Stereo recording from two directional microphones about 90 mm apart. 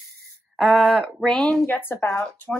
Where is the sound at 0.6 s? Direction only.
Centre (ahead or behind).